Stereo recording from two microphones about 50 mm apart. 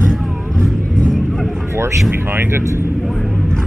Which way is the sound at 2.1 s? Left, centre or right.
Right.